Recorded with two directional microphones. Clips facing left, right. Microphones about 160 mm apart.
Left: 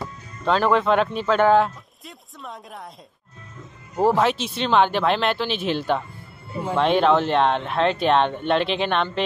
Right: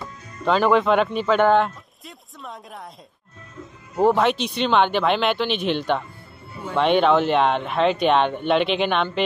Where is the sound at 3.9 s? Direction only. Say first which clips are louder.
Right 1 dB; centre (ahead or behind).